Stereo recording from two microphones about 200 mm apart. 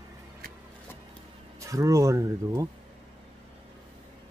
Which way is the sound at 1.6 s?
15° right (ahead or behind).